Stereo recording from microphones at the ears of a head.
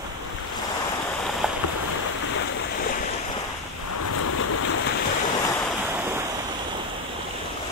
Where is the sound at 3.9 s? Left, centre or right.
Left.